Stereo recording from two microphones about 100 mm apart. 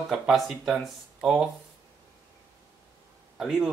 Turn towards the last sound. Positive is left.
turn(degrees=-5)  # may be behind; listen again after turning